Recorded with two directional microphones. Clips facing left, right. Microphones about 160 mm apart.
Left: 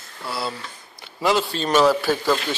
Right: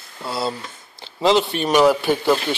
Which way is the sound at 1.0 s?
25° right (ahead or behind).